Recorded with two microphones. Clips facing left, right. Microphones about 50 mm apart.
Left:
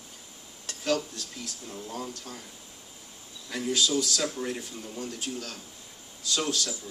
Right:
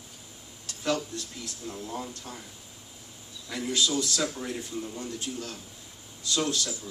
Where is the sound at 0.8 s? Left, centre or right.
Right.